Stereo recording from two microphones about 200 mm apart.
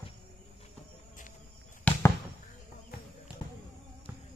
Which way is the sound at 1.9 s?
5° left (ahead or behind).